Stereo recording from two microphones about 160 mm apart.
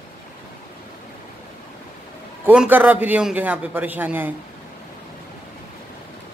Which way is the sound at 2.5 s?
10° right (ahead or behind).